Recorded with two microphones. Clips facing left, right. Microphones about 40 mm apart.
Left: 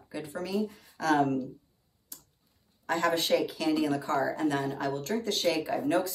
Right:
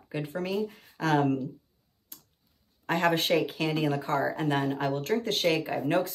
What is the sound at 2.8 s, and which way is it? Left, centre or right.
Speech, right.